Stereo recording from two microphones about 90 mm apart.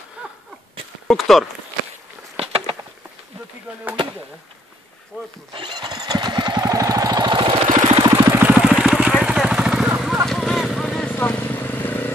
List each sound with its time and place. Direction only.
1.0 s speech: 5° left (ahead or behind)
2.3 s a sound: 90° right
5.5 s neigh: 65° right (ahead or behind)
6.7 s vehicle: 40° right (ahead or behind); by 8.1 s 70° right (ahead or behind)
8.3 s vehicle: 20° right (ahead or behind)
10.2 s vehicle: 5° left (ahead or behind); by 12.1 s 20° left (ahead or behind)